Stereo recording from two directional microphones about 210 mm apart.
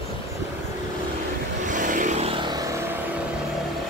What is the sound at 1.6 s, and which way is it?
Vehicle, 40° right (ahead or behind).